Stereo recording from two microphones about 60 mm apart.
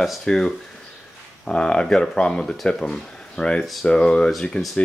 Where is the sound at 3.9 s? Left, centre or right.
Centre.